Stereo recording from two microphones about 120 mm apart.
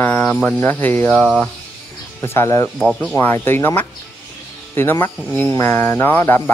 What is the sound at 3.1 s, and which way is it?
Speech, 20° left (ahead or behind).